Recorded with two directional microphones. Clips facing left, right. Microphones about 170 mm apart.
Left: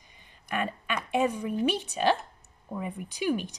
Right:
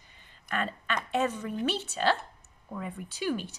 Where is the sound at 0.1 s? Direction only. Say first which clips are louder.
Left 2 dB; 15° left (ahead or behind).